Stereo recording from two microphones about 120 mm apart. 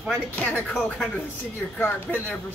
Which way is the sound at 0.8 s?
5° left (ahead or behind).